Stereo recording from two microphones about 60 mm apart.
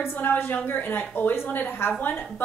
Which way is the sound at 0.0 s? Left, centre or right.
Left.